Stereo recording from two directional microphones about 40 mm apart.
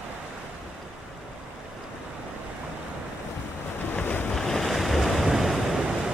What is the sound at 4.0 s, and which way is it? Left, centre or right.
Waves, left.